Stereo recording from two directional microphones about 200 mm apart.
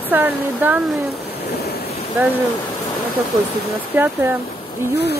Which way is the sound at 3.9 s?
10° right (ahead or behind).